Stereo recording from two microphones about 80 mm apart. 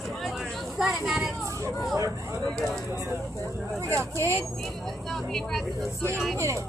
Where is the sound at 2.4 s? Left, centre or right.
Centre.